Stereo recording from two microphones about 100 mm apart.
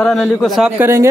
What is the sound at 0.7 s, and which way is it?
Speech, 25° right (ahead or behind).